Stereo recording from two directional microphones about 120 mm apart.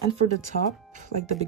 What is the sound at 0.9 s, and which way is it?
Speech, 85° right.